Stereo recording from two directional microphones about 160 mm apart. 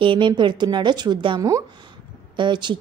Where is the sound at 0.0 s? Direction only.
30° right (ahead or behind).